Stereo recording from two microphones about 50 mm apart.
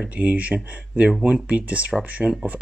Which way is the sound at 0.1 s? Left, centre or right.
Right.